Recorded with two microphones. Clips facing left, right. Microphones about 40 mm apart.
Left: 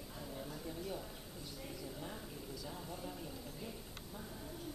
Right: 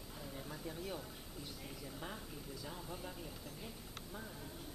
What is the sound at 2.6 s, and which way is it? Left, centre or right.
Speech, centre.